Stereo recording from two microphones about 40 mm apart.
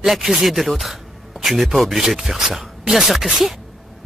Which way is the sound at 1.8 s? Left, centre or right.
Centre.